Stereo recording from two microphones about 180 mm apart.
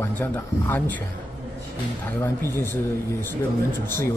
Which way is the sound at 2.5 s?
15° left (ahead or behind).